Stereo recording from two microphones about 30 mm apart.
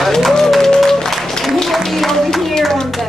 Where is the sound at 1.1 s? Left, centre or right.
Centre.